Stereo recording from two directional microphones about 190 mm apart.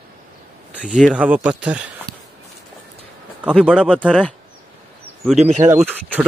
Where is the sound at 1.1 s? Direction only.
10° right (ahead or behind).